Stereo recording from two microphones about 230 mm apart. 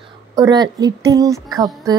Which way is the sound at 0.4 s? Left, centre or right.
Centre.